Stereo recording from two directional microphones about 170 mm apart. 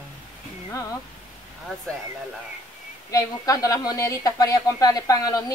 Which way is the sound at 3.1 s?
20° left (ahead or behind).